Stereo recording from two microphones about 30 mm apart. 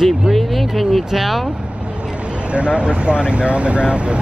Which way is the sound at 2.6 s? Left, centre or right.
Right.